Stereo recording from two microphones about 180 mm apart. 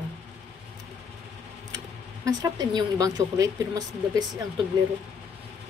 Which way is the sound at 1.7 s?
20° right (ahead or behind).